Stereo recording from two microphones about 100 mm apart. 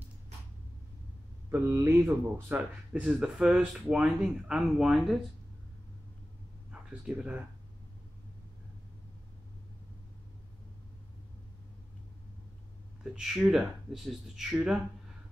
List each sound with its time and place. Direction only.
1.7 s speech: 25° right (ahead or behind)
2.5 s speech: 10° right (ahead or behind)
6.7 s speech: 10° right (ahead or behind)
13.0 s speech: 5° right (ahead or behind)